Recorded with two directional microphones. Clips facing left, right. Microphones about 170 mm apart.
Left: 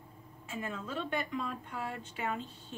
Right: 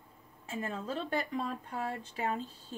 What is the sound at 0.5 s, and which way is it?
A woman's voice, 30° right (ahead or behind).